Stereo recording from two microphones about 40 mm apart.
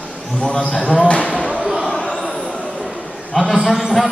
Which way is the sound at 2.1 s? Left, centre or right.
Centre.